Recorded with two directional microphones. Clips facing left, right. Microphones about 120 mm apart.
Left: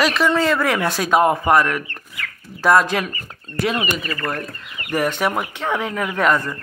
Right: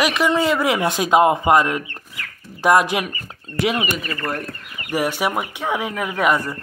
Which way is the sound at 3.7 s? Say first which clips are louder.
Even; 5° right (ahead or behind).